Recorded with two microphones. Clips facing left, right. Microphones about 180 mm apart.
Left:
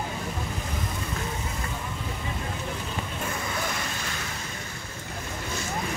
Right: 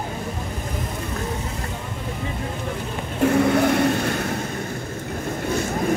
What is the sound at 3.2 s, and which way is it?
Vehicle, 70° right (ahead or behind).